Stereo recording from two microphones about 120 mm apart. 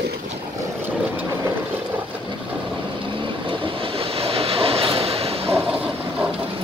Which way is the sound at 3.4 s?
50° right (ahead or behind).